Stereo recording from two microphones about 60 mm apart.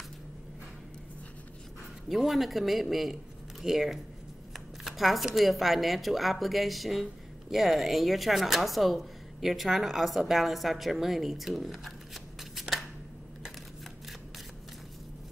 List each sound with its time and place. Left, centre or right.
2.0 s a man's voice: centre